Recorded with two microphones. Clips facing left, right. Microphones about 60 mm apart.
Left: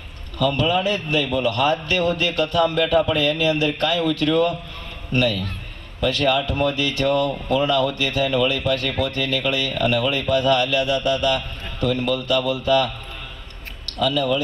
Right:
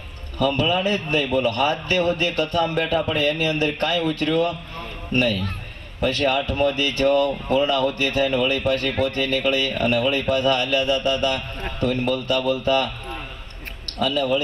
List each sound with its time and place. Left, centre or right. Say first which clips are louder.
0.4 s speech: left 1 dB; right